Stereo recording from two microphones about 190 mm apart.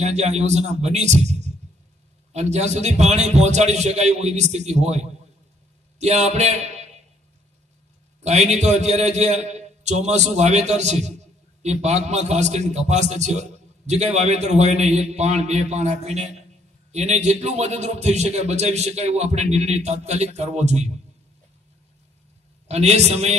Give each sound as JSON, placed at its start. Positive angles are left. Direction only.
{"t": 0.0, "sound": "a man's voice", "side_deg": -35}
{"t": 8.2, "sound": "a man's voice", "side_deg": -35}
{"t": 22.7, "sound": "a man's voice", "side_deg": -35}